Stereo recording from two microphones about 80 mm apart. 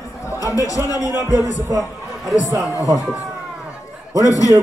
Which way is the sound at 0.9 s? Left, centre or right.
Left.